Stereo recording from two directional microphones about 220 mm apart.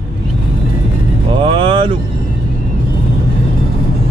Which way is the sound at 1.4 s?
25° right (ahead or behind).